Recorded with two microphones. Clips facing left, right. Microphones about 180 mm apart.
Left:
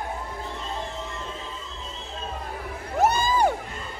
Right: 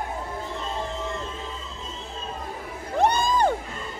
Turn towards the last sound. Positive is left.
turn(degrees=5)  # may be behind; listen again after turning